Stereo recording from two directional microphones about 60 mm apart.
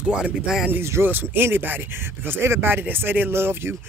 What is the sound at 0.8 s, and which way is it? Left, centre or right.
Speech, right.